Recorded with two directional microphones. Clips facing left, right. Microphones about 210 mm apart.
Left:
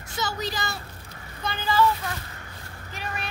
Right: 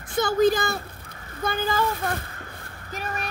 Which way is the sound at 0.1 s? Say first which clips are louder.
Right 11 dB; 50° right (ahead or behind).